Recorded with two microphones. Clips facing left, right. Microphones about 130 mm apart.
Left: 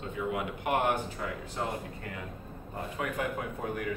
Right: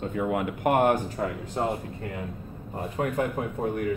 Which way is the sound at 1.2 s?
40° right (ahead or behind).